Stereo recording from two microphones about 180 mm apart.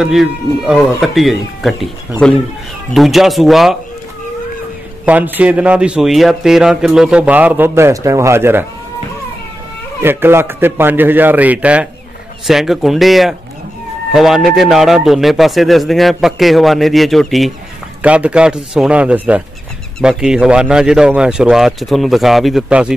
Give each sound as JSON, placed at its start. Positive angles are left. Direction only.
{"t": 0.0, "sound": "a man's voice", "side_deg": -5}
{"t": 5.0, "sound": "speech", "side_deg": -10}
{"t": 10.0, "sound": "a man's voice", "side_deg": -10}